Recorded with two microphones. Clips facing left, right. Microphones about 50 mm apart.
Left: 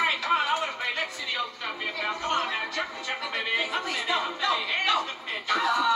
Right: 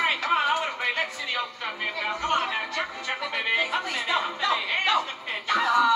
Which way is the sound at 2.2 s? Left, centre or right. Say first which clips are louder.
Right 3 dB; right.